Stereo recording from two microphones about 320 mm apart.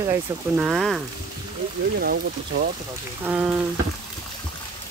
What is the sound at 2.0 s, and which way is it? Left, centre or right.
Speech, right.